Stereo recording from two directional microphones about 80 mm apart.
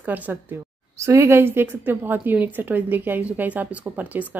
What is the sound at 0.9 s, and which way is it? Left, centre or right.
A woman's voice, right.